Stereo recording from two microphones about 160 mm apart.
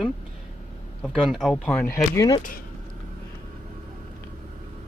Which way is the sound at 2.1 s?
25° left (ahead or behind).